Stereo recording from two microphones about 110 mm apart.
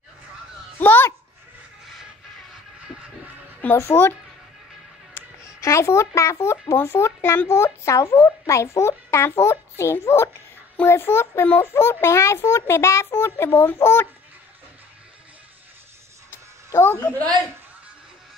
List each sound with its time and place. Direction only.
0.7 s a sound: 20° left (ahead or behind)
3.7 s speech: 20° left (ahead or behind)
5.1 s a child's voice: 30° left (ahead or behind)
16.7 s speech: 20° left (ahead or behind)